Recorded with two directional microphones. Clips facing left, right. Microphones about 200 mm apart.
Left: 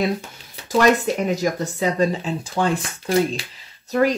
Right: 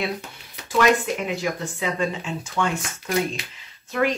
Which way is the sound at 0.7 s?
40° left (ahead or behind).